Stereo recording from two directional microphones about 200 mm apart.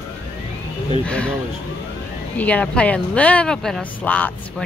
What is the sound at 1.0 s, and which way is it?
Speech, 5° left (ahead or behind).